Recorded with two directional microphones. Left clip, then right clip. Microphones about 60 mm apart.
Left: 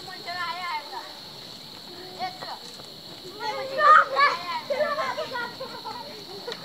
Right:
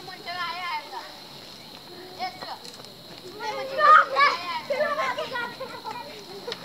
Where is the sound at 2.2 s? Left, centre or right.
Centre.